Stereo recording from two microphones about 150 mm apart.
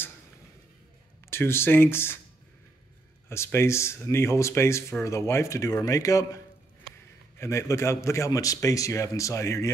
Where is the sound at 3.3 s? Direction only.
15° left (ahead or behind).